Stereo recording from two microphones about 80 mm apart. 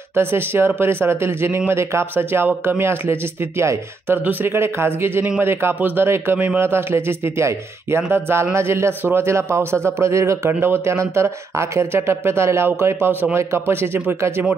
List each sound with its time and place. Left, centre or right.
0.1 s speech: right
4.2 s speech: right